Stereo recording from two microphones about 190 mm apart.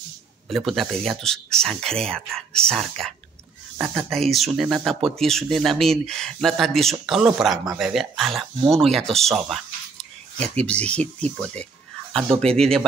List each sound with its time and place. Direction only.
0.5 s speech: centre (ahead or behind)
10.4 s speech: 35° right (ahead or behind)
10.7 s speech: 5° left (ahead or behind)